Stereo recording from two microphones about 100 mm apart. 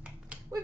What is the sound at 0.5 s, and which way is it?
Finger snapping, 35° right (ahead or behind).